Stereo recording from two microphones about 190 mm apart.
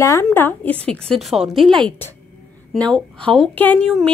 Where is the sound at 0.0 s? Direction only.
15° left (ahead or behind).